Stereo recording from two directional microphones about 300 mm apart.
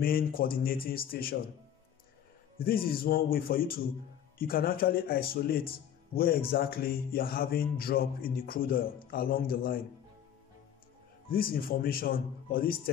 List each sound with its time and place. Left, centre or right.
0.0 s speech: left
2.6 s speech: left
11.2 s speech: left